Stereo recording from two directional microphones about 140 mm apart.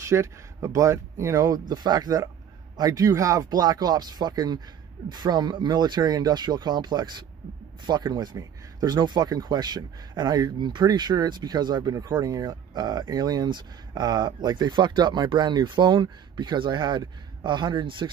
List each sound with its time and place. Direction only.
0.0 s speech: 20° right (ahead or behind)